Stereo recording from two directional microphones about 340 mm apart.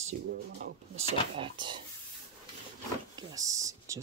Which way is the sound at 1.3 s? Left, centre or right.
Centre.